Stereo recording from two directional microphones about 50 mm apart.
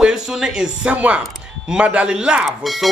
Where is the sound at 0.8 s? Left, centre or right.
Right.